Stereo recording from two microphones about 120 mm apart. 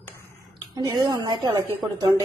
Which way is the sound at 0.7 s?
35° right (ahead or behind).